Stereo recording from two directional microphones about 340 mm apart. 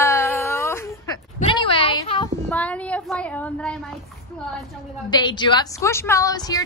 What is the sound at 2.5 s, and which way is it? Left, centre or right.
A woman's voice, centre.